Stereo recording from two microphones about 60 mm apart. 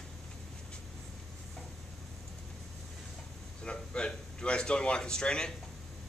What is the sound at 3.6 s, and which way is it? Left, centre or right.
Speech, centre.